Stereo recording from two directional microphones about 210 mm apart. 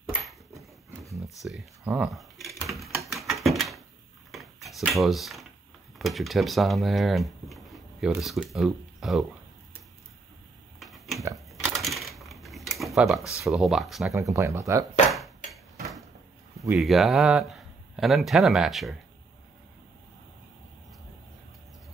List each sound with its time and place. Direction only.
0.6 s horse: 15° right (ahead or behind)
1.4 s typewriter: centre (ahead or behind)
3.4 s door: centre (ahead or behind)
4.3 s a sound: centre (ahead or behind)
5.9 s speech: centre (ahead or behind)
10.8 s a sound: centre (ahead or behind)
11.5 s coin: centre (ahead or behind)
12.8 s speech: centre (ahead or behind)
14.1 s speech: 15° right (ahead or behind)
15.0 s dishes: centre (ahead or behind)
16.7 s speech: centre (ahead or behind)